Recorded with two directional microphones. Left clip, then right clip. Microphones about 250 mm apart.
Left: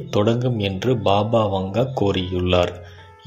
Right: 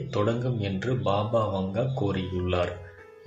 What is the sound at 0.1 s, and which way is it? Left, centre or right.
Speech, left.